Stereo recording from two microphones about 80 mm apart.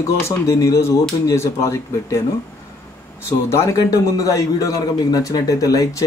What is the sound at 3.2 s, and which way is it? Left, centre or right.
A man's voice, left.